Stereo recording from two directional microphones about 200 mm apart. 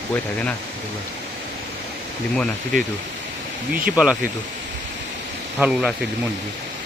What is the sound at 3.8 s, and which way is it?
Speech, 5° right (ahead or behind).